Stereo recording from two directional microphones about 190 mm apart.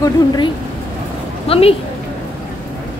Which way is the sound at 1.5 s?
30° left (ahead or behind).